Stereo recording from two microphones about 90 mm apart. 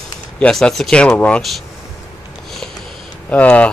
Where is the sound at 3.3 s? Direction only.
15° left (ahead or behind).